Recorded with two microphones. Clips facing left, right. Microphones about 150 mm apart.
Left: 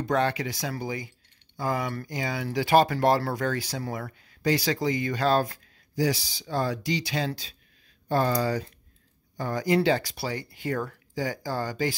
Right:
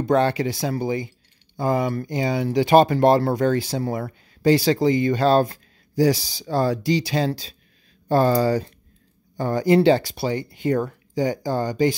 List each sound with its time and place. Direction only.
0.0 s speech: 30° right (ahead or behind)